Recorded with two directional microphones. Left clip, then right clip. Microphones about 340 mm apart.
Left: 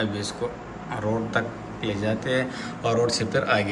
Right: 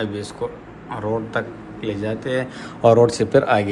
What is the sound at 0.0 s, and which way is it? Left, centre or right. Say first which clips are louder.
A man's voice: right 2 dB; centre.